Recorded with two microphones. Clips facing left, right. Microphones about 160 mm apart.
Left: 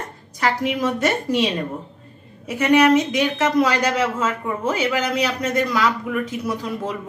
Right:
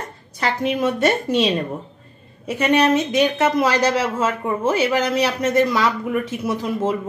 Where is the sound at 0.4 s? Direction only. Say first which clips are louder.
Right 1 dB; 30° right (ahead or behind).